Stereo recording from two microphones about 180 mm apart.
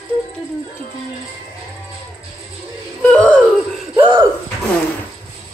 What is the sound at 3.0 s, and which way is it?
Laughter, 5° left (ahead or behind).